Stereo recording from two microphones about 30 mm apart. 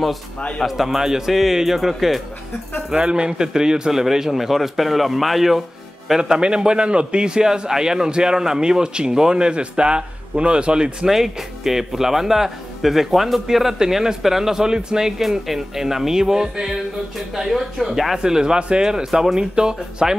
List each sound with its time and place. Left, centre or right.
0.7 s a man's voice: centre
1.8 s a man's voice: centre
2.9 s a man's voice: right; by 5.6 s centre
6.2 s speech: right
11.1 s a man's voice: centre
15.2 s a woman's voice: centre
17.4 s a woman's voice: centre
18.2 s speech: right